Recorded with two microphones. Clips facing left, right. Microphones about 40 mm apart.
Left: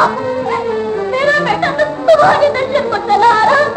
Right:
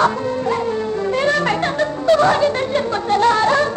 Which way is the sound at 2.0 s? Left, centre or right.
Left.